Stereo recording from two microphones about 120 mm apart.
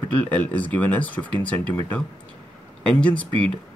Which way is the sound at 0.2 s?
10° left (ahead or behind).